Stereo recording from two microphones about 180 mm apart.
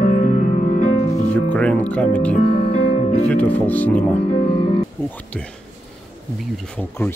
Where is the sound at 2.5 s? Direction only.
40° left (ahead or behind).